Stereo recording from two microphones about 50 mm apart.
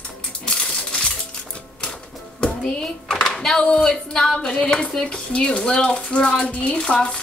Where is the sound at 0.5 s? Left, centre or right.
Centre.